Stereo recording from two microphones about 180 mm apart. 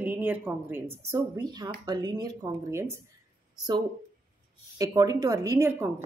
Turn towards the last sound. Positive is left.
turn(degrees=-15)  # may be behind; listen again after turning